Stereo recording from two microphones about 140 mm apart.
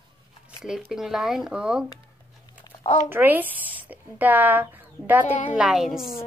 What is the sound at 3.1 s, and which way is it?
A woman's voice, 15° right (ahead or behind).